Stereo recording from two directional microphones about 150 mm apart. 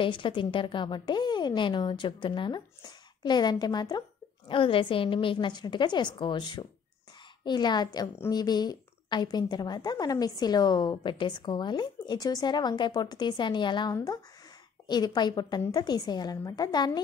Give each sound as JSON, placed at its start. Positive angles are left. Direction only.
{"t": 0.0, "sound": "a woman's voice", "side_deg": 35}